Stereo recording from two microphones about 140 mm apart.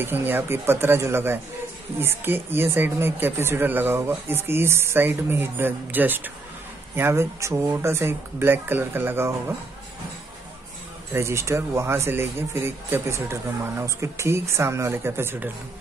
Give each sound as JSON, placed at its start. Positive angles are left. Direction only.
{"t": 0.0, "sound": "speech", "side_deg": -15}
{"t": 11.1, "sound": "speech", "side_deg": -20}